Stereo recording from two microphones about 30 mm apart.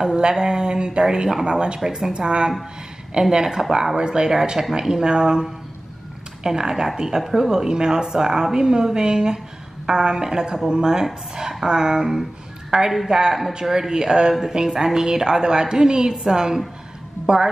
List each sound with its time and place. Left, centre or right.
0.0 s a woman's voice: right
6.4 s a woman's voice: right
12.7 s speech: right
13.1 s a woman's voice: right